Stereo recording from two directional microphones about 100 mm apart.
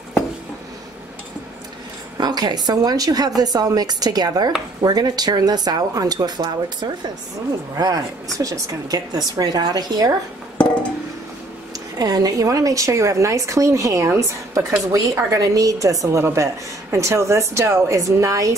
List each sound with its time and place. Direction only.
2.1 s a woman's voice: 45° right (ahead or behind)
7.7 s a woman's voice: 35° right (ahead or behind)
12.0 s a woman's voice: 40° right (ahead or behind)